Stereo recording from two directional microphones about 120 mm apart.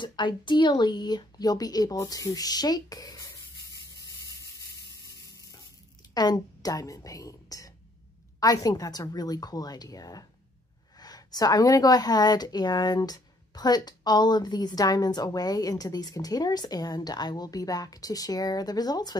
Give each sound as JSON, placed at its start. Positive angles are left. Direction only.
{"t": 0.0, "sound": "speech", "side_deg": 40}
{"t": 4.0, "sound": "a sound", "side_deg": 30}
{"t": 6.1, "sound": "a woman's voice", "side_deg": 35}